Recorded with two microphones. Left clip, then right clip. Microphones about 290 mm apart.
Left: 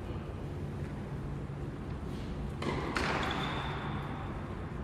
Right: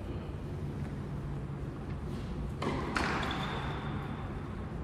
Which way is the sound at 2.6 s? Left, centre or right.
Centre.